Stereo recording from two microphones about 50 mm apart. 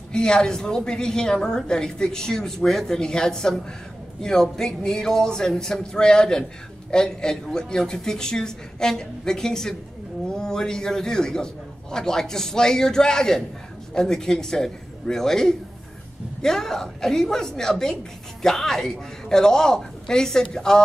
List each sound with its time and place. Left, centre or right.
0.1 s a woman's voice: centre